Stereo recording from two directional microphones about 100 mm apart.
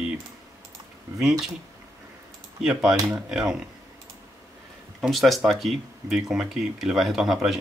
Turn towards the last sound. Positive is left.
turn(degrees=-5)  # may be behind; listen again after turning